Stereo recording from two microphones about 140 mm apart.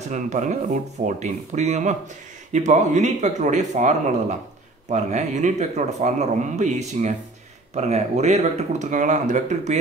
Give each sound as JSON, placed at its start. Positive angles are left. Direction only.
{"t": 0.1, "sound": "a man's voice", "side_deg": -60}